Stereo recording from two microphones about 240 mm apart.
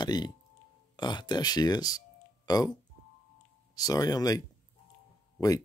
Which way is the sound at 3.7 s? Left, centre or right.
Centre.